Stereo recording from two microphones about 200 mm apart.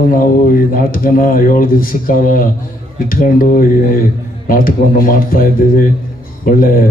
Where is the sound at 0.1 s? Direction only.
45° left (ahead or behind).